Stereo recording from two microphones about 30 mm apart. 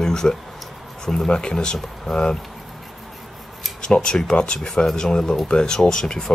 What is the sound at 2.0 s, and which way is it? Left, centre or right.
Speech, centre.